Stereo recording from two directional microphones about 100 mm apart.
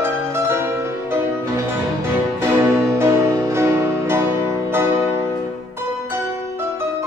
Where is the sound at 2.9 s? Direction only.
25° right (ahead or behind).